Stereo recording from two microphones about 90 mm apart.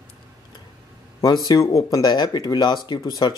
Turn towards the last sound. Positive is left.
turn(degrees=45)  # may be behind; listen again after turning